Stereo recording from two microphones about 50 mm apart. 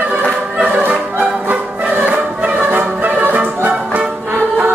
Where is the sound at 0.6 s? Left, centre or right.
Right.